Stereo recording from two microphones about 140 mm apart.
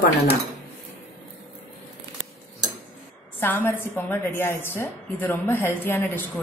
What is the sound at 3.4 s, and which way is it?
A woman's voice, 15° left (ahead or behind).